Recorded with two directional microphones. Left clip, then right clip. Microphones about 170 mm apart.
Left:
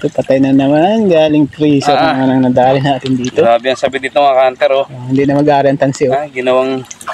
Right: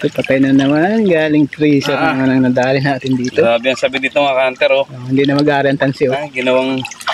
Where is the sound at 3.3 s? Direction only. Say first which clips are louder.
Left 3 dB; 35° right (ahead or behind).